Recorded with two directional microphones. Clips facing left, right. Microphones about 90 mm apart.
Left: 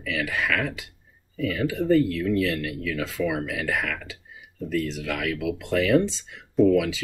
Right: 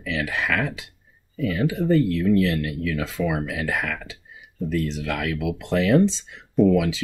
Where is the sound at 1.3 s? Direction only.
25° right (ahead or behind).